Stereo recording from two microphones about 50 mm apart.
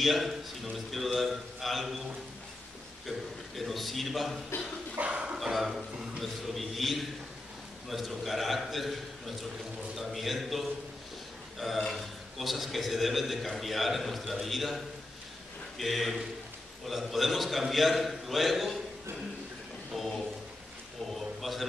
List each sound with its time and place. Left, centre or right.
0.0 s a man's voice: centre
3.1 s a man's voice: centre
4.9 s speech: right
5.4 s a man's voice: centre
6.2 s a man's voice: centre
11.5 s burping: centre
11.9 s a man's voice: centre
15.8 s a man's voice: centre
19.9 s a sound: centre
21.1 s a man's voice: centre